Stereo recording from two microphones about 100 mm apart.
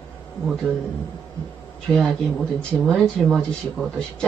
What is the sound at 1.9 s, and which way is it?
Speech, centre (ahead or behind).